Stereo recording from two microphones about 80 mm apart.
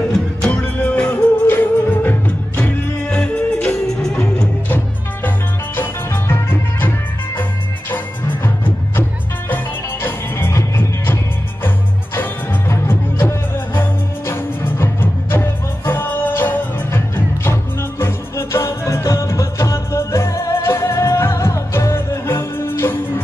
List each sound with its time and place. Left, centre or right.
0.4 s music: centre
4.1 s music: centre
5.8 s music: left
7.9 s music: left
10.0 s music: left
12.6 s music: left